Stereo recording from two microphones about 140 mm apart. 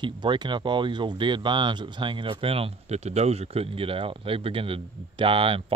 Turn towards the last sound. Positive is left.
turn(degrees=-40)  # may be behind; listen again after turning